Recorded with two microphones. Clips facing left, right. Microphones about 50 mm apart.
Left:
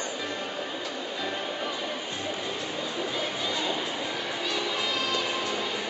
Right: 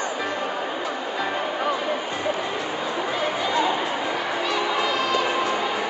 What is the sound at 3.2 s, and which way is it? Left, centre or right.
Chatter, right.